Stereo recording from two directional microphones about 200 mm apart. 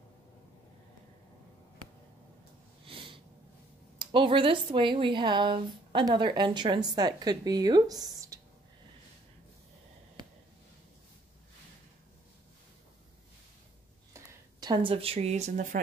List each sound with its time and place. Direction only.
2.8 s a sound: 25° right (ahead or behind)
4.0 s speech: 25° right (ahead or behind)
14.1 s speech: 20° right (ahead or behind); by 15.8 s 40° right (ahead or behind)